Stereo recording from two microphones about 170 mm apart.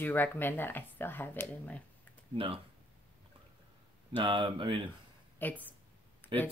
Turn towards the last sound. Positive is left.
turn(degrees=10)  # may be behind; listen again after turning